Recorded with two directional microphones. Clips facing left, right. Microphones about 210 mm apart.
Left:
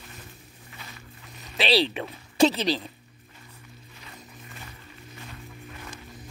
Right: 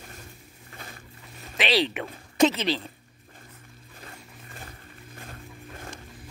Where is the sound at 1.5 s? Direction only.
35° left (ahead or behind).